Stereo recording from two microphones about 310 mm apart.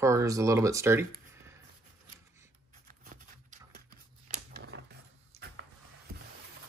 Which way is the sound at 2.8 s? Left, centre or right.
Right.